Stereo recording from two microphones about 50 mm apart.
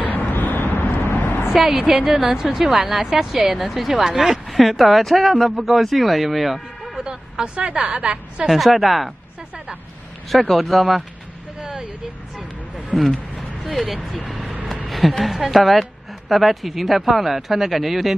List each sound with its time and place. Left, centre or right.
0.0 s vehicle: left
1.0 s a sound: left
1.5 s a woman's voice: centre
7.0 s a woman's voice: centre
8.5 s a woman's voice: centre
10.3 s a woman's voice: centre
12.4 s vehicle: centre
14.2 s a woman's voice: centre